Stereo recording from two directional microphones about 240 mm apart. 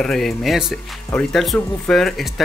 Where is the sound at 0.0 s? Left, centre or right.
Centre.